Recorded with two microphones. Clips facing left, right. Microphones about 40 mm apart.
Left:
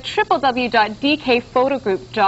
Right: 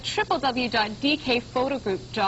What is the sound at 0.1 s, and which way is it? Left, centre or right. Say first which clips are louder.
A woman's voice: left 8 dB; left.